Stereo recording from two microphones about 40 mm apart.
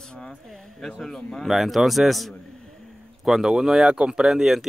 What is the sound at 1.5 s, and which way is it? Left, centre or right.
Speech, centre.